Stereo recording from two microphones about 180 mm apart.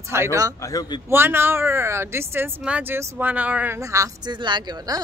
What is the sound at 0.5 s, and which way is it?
Speech, 20° left (ahead or behind).